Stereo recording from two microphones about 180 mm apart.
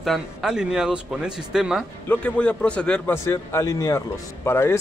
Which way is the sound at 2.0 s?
5° left (ahead or behind).